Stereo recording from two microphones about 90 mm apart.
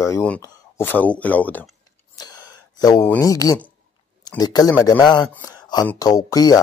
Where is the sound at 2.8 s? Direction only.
45° left (ahead or behind).